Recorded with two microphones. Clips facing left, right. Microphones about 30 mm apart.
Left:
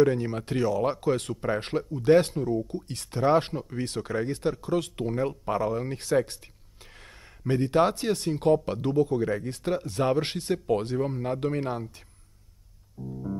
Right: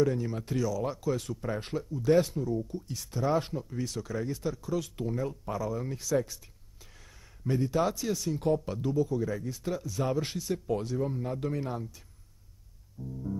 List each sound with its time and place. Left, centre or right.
0.0 s speech: left
7.4 s speech: left
13.0 s music: left